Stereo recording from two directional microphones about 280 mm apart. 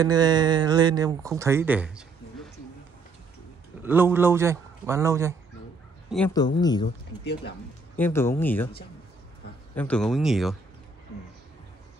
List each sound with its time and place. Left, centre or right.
0.0 s speech: centre
3.8 s speech: centre
6.0 s speech: centre
6.6 s speech: centre
7.2 s speech: left
8.0 s speech: centre
9.8 s speech: centre